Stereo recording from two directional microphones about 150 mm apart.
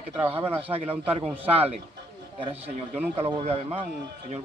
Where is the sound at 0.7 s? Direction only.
40° right (ahead or behind).